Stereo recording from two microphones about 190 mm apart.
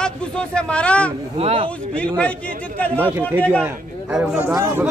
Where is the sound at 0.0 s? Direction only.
5° left (ahead or behind).